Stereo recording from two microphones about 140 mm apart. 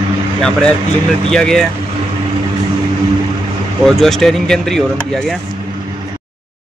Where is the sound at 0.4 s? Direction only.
5° left (ahead or behind).